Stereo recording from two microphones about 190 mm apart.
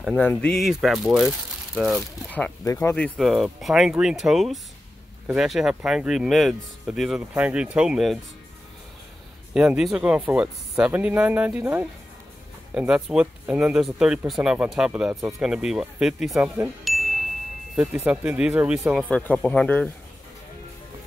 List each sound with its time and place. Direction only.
0.0 s speech: 5° left (ahead or behind)
2.6 s speech: 15° left (ahead or behind)
3.0 s speech: centre (ahead or behind)
9.5 s speech: 5° right (ahead or behind)
19.0 s speech: 5° left (ahead or behind)